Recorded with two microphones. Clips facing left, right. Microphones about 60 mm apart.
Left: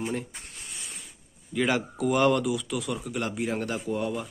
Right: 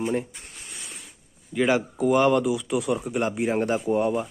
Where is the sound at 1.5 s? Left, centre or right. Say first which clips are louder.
Right 4 dB; centre.